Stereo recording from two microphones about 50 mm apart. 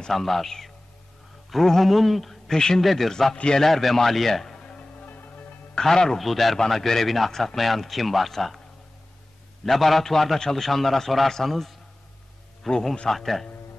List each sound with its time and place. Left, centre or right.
0.0 s a man's voice: centre
3.3 s a man's voice: centre
3.6 s a man's voice: centre
4.6 s music: centre
5.0 s music: left
5.8 s a man's voice: centre
9.7 s a man's voice: centre